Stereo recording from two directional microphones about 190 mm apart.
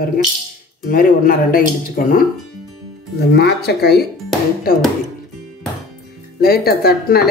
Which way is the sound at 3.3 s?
60° left (ahead or behind).